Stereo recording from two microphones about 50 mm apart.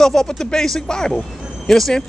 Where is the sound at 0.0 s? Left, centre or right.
Centre.